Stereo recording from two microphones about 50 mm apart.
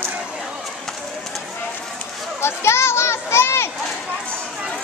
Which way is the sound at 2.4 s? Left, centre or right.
Left.